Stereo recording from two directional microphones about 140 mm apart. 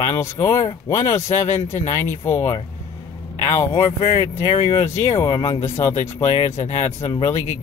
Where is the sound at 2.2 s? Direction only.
20° left (ahead or behind).